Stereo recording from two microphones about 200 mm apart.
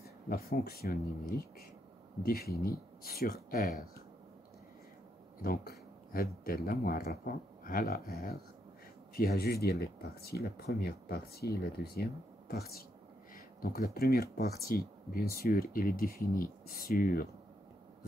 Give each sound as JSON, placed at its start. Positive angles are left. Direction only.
{"t": 0.0, "sound": "speech", "side_deg": 50}
{"t": 2.2, "sound": "speech", "side_deg": 50}
{"t": 5.4, "sound": "a sound", "side_deg": 50}
{"t": 6.4, "sound": "speech", "side_deg": 50}
{"t": 13.9, "sound": "speech", "side_deg": 50}